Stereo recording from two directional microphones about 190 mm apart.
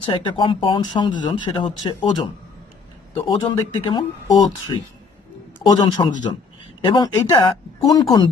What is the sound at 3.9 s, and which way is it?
A man's voice, 20° left (ahead or behind).